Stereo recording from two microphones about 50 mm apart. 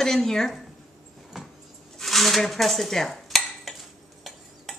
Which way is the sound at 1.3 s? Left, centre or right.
Centre.